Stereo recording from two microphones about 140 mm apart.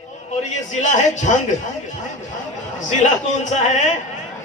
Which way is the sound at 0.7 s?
60° left (ahead or behind).